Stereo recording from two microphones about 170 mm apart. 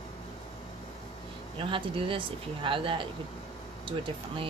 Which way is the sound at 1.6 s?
30° right (ahead or behind).